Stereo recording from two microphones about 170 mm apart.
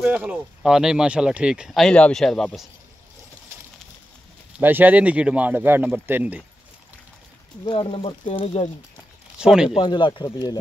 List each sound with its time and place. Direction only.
0.0 s speech: 5° right (ahead or behind)
4.6 s speech: 10° right (ahead or behind)
7.6 s speech: 30° left (ahead or behind)
9.4 s speech: 5° right (ahead or behind)
9.8 s speech: 30° left (ahead or behind)